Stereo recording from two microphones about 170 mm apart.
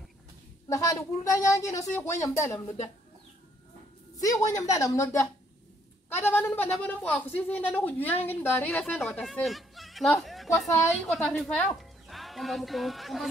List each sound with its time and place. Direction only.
0.7 s speech: 20° left (ahead or behind)
4.2 s a woman's voice: 20° left (ahead or behind); by 13.3 s centre (ahead or behind)